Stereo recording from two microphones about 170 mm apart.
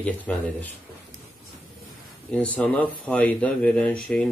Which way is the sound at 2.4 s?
10° left (ahead or behind).